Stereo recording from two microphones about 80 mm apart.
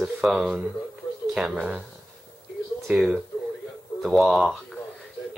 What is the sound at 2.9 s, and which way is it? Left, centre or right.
Speech, centre.